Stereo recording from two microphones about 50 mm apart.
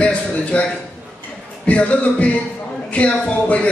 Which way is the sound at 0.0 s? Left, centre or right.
Left.